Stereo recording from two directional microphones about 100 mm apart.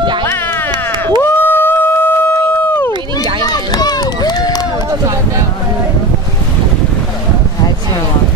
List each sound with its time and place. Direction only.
1.2 s music: 20° left (ahead or behind)
3.3 s run: 40° left (ahead or behind)